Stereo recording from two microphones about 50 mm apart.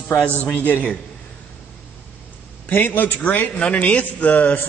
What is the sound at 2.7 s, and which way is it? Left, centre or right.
Speech, left.